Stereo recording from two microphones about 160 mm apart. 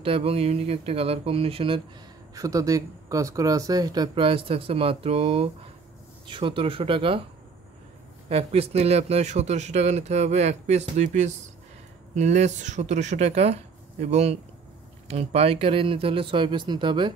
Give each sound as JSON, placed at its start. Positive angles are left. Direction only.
{"t": 0.0, "sound": "speech", "side_deg": -35}
{"t": 2.3, "sound": "speech", "side_deg": -20}
{"t": 8.3, "sound": "speech", "side_deg": -40}